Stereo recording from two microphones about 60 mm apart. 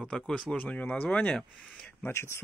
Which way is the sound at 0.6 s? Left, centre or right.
Left.